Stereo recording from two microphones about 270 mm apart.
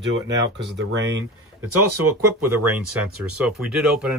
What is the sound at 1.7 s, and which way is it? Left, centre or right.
Speech, right.